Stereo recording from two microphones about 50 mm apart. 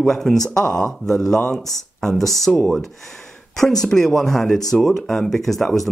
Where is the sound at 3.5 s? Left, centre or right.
Centre.